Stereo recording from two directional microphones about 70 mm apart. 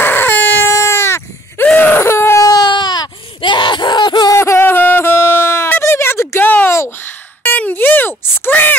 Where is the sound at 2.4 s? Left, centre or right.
Left.